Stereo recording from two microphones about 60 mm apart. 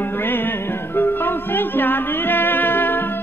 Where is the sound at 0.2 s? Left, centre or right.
Left.